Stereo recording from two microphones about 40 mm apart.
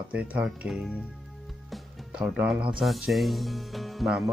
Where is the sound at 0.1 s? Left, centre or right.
Right.